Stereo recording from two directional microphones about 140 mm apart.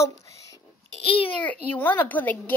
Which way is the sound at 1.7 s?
15° left (ahead or behind).